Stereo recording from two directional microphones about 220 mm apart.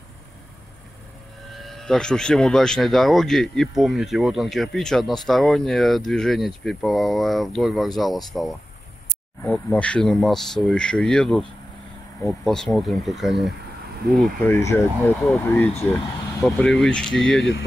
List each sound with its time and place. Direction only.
1.6 s speech: centre (ahead or behind)
9.4 s speech: 10° left (ahead or behind)
12.4 s speech: centre (ahead or behind)
14.4 s speech: 10° left (ahead or behind)
15.1 s speech: centre (ahead or behind)
15.4 s speech: 15° left (ahead or behind)
16.4 s speech: centre (ahead or behind)
17.4 s speech: 55° left (ahead or behind)